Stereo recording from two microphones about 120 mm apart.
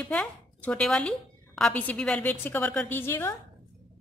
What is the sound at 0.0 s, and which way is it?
A woman's voice, 10° left (ahead or behind).